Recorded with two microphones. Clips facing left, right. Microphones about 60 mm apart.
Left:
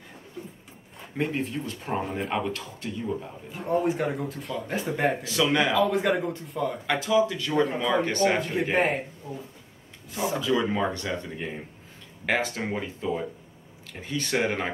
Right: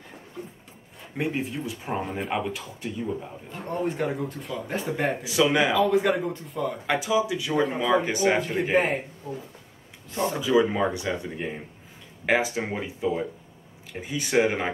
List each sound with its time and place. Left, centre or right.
1.1 s speech: centre
3.5 s speech: centre
5.2 s speech: centre
6.9 s speech: centre
9.3 s speech: centre
10.1 s a man's voice: centre
10.4 s speech: centre